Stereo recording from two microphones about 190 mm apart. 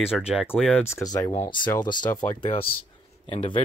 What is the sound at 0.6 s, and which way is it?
Speech, centre (ahead or behind).